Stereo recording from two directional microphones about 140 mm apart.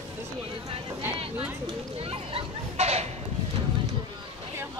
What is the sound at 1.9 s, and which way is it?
Children playing, 45° right (ahead or behind).